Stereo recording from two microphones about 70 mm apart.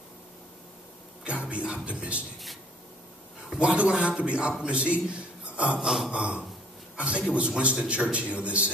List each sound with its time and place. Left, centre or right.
1.2 s a man's voice: centre
3.5 s a man's voice: centre
5.9 s gasp: centre
6.1 s a man's voice: centre